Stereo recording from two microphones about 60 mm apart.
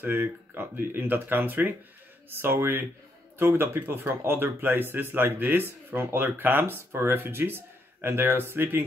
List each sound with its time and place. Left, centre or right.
0.0 s speech: right